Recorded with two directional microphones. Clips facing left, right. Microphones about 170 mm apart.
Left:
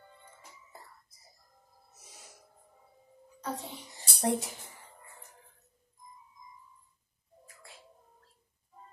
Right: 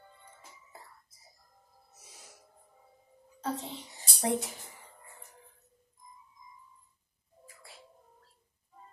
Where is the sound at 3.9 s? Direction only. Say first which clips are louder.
Left 1 dB; centre (ahead or behind).